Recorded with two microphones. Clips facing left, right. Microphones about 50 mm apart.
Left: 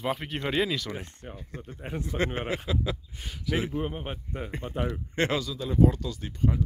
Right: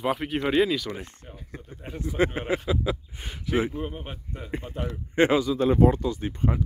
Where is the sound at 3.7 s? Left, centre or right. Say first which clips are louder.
Left 2 dB; centre.